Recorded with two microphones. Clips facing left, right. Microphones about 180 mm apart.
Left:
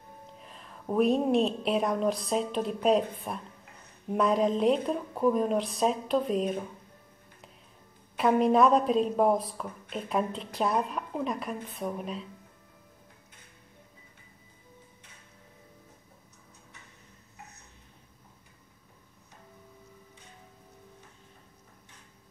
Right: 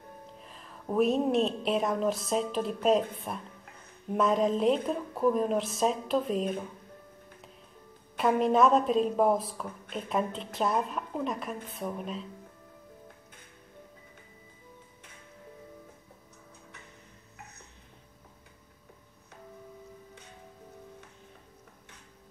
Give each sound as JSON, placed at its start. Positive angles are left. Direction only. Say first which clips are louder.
{"t": 0.3, "sound": "a woman's voice", "louder": "even", "side_deg": 0}
{"t": 8.2, "sound": "a woman's voice", "louder": "left 1 dB", "side_deg": 0}